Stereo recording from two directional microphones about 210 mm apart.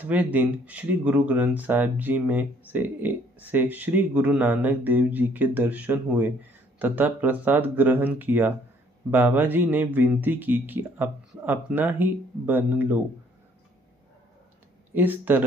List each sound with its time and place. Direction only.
0.0 s speech: 5° right (ahead or behind)
15.0 s speech: 10° right (ahead or behind)